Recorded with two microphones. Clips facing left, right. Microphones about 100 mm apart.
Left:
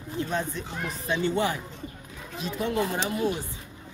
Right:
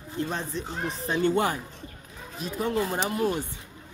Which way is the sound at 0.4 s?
30° right (ahead or behind).